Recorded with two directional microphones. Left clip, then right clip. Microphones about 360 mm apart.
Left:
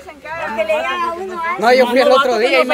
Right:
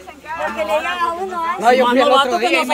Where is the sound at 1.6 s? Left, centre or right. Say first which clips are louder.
Left 2 dB; left.